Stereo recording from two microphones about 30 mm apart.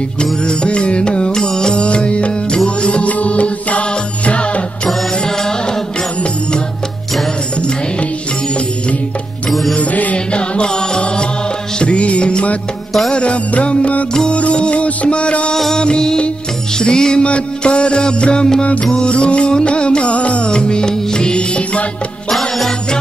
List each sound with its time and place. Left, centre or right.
0.7 s music: left
1.3 s music: left
1.8 s music: left
10.1 s music: left
15.5 s music: centre
17.2 s music: left
20.4 s music: left